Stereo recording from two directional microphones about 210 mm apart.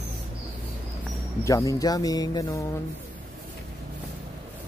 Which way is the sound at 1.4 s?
15° left (ahead or behind).